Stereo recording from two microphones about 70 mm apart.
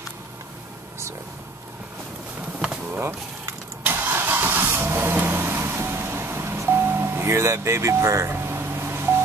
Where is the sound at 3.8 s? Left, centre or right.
Right.